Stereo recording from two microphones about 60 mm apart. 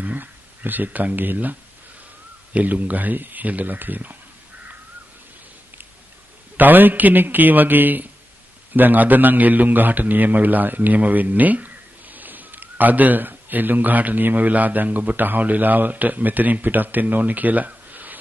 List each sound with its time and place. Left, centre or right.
0.0 s a man's voice: right
6.5 s a man's voice: right